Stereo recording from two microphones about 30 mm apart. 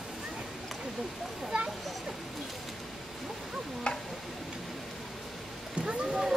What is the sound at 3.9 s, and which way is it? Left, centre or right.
Tick-tock, left.